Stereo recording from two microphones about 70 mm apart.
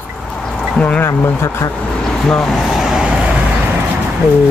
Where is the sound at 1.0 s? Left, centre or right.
Left.